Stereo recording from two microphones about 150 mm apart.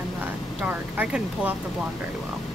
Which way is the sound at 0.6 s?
10° right (ahead or behind).